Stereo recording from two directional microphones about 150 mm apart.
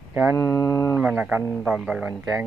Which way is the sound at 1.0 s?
10° right (ahead or behind).